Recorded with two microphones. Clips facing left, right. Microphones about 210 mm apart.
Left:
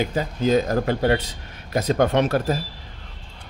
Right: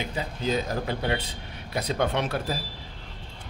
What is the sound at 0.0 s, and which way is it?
Speech, 45° left (ahead or behind).